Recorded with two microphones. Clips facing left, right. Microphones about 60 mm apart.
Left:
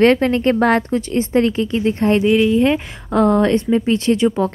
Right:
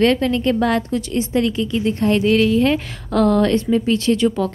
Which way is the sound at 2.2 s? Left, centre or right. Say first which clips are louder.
Left 1 dB; centre.